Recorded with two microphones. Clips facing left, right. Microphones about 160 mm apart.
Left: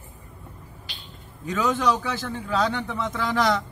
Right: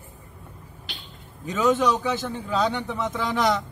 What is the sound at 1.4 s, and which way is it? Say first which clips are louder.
Speech: right 2 dB; 20° right (ahead or behind).